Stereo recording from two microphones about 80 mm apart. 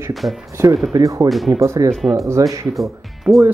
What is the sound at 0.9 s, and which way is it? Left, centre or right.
Speech, right.